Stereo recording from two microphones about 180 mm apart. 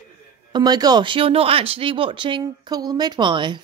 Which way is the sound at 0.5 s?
20° right (ahead or behind).